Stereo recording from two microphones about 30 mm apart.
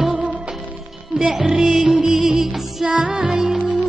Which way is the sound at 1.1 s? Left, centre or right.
Right.